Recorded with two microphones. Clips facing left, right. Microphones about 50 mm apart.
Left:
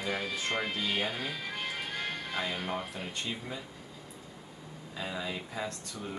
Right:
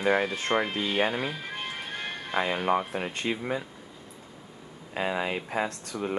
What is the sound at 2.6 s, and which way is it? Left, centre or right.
Speech, right.